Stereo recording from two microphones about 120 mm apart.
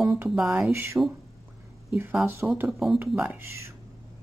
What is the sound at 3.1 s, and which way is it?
Speech, 5° right (ahead or behind).